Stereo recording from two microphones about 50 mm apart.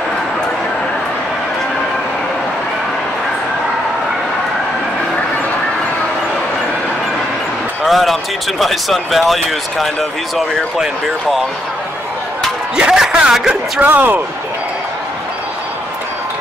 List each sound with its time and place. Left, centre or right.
7.8 s speech: centre
12.7 s speech: centre
13.7 s speech: right